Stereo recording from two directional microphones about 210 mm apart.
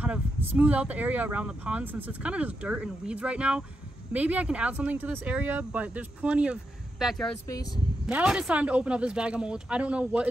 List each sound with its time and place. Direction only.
0.0 s speech: 10° right (ahead or behind)
7.4 s speech: 20° left (ahead or behind)
8.1 s speech: 5° right (ahead or behind)